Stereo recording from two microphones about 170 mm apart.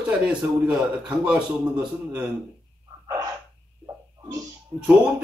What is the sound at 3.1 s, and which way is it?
Sneeze, 20° right (ahead or behind).